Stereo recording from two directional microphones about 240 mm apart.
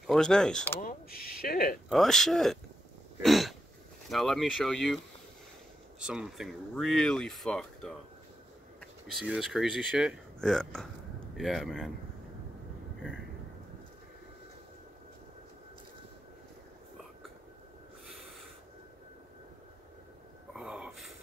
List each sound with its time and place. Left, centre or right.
0.0 s speech: centre
0.7 s speech: left
1.9 s speech: centre
3.2 s throat clearing: centre
4.1 s speech: centre
9.0 s speech: centre
18.0 s snort: centre
20.5 s a sound: centre